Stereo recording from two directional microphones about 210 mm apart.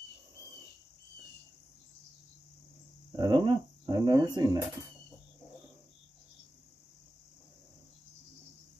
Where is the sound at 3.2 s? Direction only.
20° right (ahead or behind).